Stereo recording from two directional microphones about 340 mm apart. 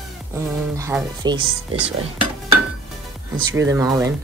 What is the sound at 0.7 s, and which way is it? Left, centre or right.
Speech, centre.